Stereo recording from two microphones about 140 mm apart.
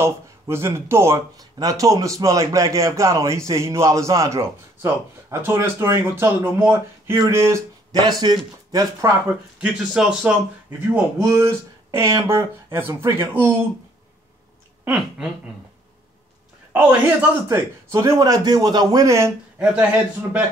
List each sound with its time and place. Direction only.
0.0 s speech: 20° right (ahead or behind)
9.6 s speech: 5° right (ahead or behind)
10.9 s speech: 20° right (ahead or behind)
14.9 s a sound: 5° right (ahead or behind)
16.7 s speech: 10° right (ahead or behind)
19.6 s speech: 10° right (ahead or behind)